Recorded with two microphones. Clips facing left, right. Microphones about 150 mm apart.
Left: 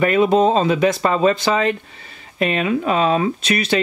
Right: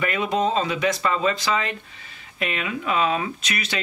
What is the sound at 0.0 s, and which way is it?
Speech, 40° left (ahead or behind).